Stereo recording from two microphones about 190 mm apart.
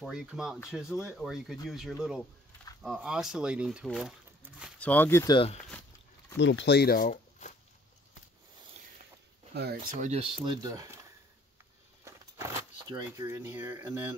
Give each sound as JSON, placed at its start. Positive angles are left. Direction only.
{"t": 0.0, "sound": "speech", "side_deg": -5}
{"t": 4.7, "sound": "speech", "side_deg": 10}
{"t": 5.3, "sound": "speech", "side_deg": 30}
{"t": 6.3, "sound": "speech", "side_deg": 70}
{"t": 9.5, "sound": "speech", "side_deg": -60}
{"t": 9.9, "sound": "speech", "side_deg": -35}
{"t": 12.0, "sound": "a sound", "side_deg": -15}